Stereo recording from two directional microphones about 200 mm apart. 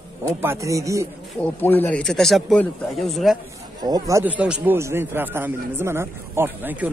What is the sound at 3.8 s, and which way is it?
Speech, 20° right (ahead or behind).